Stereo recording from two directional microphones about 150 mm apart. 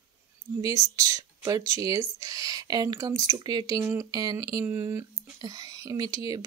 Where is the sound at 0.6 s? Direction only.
20° right (ahead or behind).